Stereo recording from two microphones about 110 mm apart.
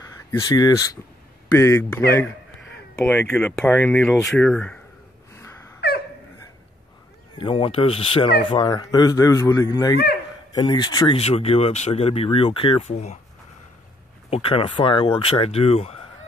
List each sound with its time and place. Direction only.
0.3 s a man's voice: 35° left (ahead or behind)
3.3 s speech: 10° left (ahead or behind)
7.3 s speech: 50° left (ahead or behind)
8.6 s a man's voice: 35° left (ahead or behind)
11.1 s speech: 65° left (ahead or behind)
12.8 s speech: 90° left
14.3 s speech: 55° left (ahead or behind)